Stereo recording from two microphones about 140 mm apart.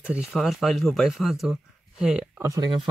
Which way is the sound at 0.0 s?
10° right (ahead or behind).